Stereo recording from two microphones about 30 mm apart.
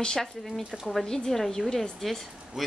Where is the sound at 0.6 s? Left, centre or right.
Right.